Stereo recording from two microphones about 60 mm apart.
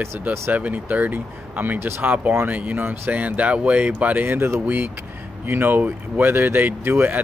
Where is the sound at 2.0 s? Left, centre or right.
Right.